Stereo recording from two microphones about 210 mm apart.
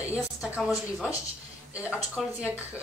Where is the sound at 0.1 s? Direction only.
5° right (ahead or behind).